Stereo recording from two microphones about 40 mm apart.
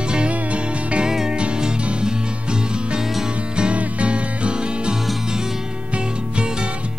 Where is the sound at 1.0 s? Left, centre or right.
Centre.